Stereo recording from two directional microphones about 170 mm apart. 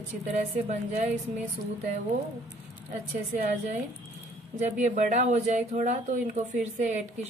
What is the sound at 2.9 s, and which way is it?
Speech, 45° right (ahead or behind).